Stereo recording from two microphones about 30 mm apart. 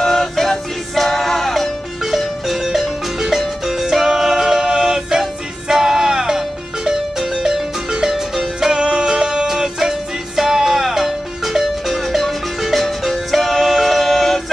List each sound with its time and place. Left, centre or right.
0.0 s music: centre
8.7 s music: right
9.5 s music: centre
12.7 s music: centre